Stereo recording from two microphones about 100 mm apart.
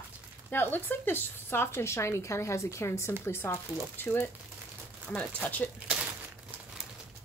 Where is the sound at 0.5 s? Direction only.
20° left (ahead or behind).